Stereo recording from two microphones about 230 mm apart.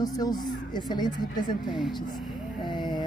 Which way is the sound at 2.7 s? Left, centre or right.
Centre.